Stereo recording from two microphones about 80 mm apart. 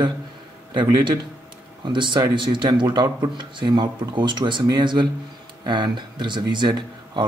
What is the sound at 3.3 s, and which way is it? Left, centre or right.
A man's voice, right.